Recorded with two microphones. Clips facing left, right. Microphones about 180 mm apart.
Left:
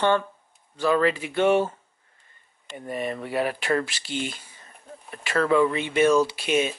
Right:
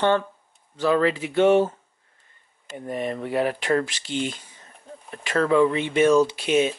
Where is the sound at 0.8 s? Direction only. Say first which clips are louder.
Right 1 dB; 20° right (ahead or behind).